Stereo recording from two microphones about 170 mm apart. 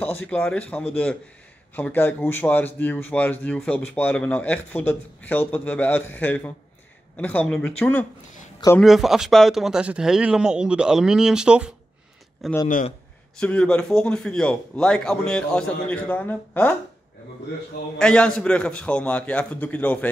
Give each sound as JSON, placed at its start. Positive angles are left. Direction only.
{"t": 0.0, "sound": "speech", "side_deg": 10}
{"t": 8.8, "sound": "a man's voice", "side_deg": 0}
{"t": 12.6, "sound": "a man's voice", "side_deg": 50}
{"t": 13.4, "sound": "a man's voice", "side_deg": 5}
{"t": 17.9, "sound": "speech", "side_deg": 5}